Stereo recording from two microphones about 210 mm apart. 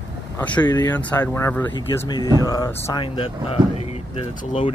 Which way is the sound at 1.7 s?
20° left (ahead or behind).